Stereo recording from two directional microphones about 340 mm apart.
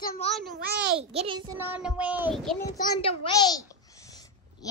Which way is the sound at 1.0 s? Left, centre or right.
Centre.